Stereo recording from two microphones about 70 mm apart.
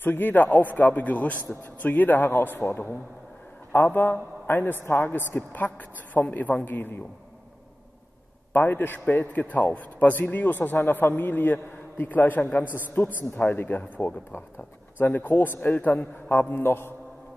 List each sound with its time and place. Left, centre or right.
0.0 s a man's voice: left
8.5 s a man's voice: left